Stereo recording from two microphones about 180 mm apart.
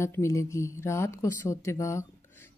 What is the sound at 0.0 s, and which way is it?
Speech, 15° left (ahead or behind).